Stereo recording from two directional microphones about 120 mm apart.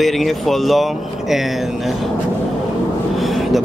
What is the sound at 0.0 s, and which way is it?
Speech, centre (ahead or behind).